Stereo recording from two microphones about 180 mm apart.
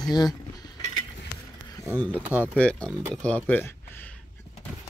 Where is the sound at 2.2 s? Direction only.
10° right (ahead or behind).